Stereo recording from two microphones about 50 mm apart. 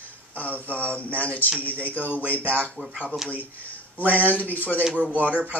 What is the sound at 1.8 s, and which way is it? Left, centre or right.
Speech, left.